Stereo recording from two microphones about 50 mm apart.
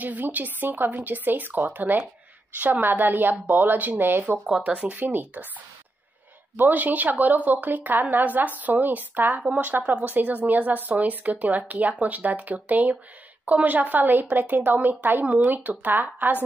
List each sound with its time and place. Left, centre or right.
0.0 s speech: right
6.5 s speech: right